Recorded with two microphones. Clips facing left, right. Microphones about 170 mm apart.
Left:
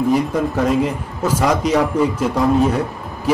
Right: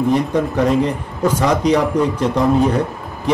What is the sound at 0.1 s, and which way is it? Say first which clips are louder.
A man's voice: right 1 dB; 5° left (ahead or behind).